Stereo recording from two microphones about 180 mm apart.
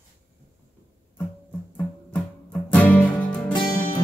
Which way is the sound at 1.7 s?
5° left (ahead or behind).